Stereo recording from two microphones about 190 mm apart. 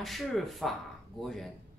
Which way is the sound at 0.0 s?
Centre (ahead or behind).